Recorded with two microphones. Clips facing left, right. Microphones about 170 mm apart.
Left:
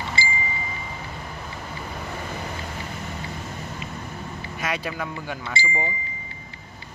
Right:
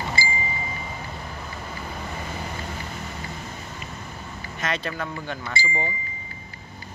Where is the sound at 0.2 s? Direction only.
25° left (ahead or behind).